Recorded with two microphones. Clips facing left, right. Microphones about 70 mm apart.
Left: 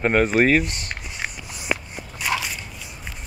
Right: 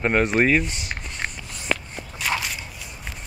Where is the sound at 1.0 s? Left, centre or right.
Centre.